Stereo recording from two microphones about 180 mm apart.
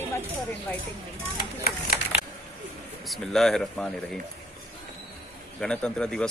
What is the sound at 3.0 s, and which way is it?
Speech, centre (ahead or behind).